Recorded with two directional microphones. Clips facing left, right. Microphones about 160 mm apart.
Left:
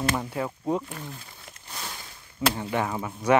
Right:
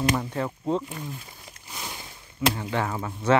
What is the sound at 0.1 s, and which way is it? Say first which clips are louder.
Speech: right 2 dB; 10° left (ahead or behind).